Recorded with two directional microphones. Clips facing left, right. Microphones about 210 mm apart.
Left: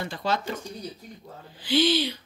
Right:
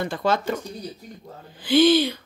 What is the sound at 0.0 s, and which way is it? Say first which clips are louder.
Speech: right 5 dB; 50° right (ahead or behind).